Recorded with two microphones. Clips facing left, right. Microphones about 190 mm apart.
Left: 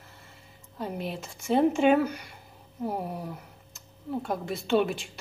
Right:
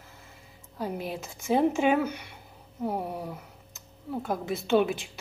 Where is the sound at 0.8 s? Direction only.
5° right (ahead or behind).